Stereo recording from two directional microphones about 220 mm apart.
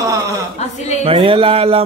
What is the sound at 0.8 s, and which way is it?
Speech, 30° left (ahead or behind).